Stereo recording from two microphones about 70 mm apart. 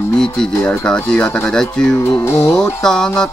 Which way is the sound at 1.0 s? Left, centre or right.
Centre.